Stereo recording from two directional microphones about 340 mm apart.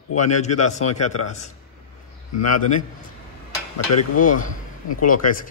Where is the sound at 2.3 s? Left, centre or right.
Left.